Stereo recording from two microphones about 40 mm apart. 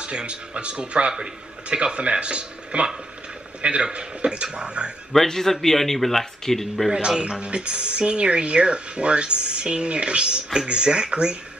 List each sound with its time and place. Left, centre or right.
0.0 s speech: right
5.1 s speech: centre
6.9 s speech: right